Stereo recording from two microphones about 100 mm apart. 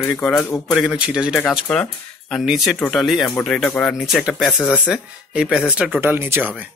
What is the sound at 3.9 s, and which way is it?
Speech, 5° right (ahead or behind).